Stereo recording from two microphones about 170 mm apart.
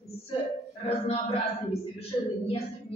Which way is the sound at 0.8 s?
35° left (ahead or behind).